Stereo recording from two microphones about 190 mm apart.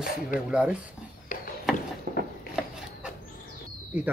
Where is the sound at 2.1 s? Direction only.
50° right (ahead or behind).